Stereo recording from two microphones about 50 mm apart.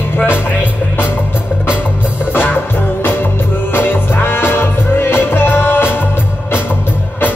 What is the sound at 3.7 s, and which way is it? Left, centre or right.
Music, left.